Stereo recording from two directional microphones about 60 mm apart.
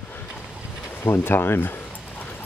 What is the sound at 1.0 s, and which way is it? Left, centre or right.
Speech, left.